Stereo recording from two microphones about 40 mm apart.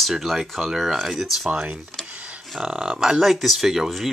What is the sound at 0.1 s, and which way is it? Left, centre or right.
Speech, centre.